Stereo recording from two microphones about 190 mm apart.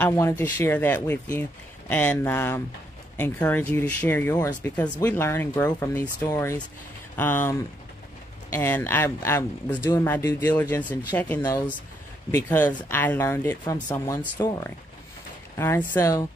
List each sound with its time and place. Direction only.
0.0 s speech: 15° left (ahead or behind)